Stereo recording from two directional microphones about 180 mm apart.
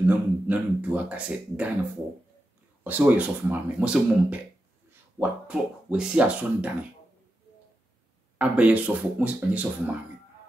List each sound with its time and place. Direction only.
0.0 s speech: 10° right (ahead or behind)
2.8 s speech: 10° right (ahead or behind)
8.4 s speech: 5° right (ahead or behind)